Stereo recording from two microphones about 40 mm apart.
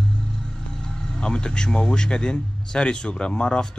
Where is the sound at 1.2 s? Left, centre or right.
Left.